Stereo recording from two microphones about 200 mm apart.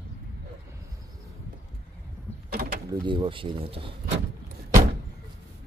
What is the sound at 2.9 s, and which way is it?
Speech, 25° right (ahead or behind).